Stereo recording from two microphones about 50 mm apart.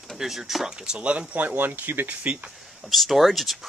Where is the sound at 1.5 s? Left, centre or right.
Right.